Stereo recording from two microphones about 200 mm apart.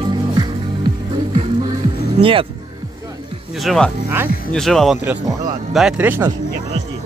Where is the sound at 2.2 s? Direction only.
25° right (ahead or behind).